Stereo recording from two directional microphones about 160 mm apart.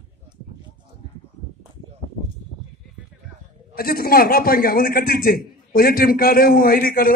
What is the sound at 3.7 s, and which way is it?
A man's voice, 70° left (ahead or behind).